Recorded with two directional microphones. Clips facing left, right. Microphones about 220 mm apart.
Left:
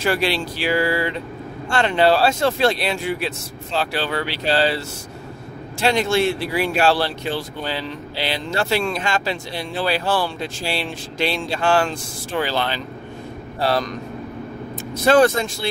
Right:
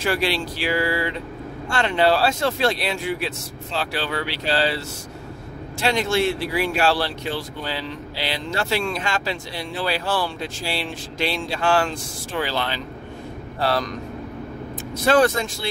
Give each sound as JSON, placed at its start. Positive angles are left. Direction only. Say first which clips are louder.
{"t": 0.0, "sound": "speech", "louder": "left 2 dB", "side_deg": 30}
{"t": 5.8, "sound": "speech", "louder": "left 3 dB", "side_deg": 25}
{"t": 13.6, "sound": "speech", "louder": "left 2 dB", "side_deg": 15}
{"t": 15.0, "sound": "speech", "louder": "left 3 dB", "side_deg": 25}